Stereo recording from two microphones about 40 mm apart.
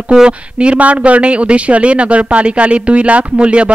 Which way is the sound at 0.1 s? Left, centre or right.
Right.